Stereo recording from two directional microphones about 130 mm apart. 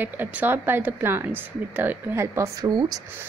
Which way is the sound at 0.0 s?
15° right (ahead or behind).